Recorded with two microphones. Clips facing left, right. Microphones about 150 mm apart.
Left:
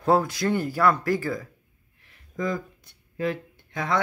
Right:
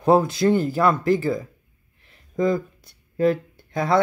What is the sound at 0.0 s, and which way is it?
Speech, 20° right (ahead or behind).